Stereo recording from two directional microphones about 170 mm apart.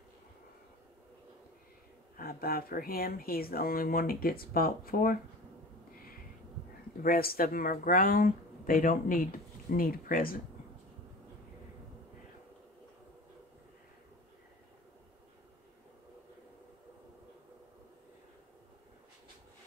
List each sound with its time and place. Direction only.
2.1 s speech: 60° left (ahead or behind)
7.0 s speech: 60° left (ahead or behind)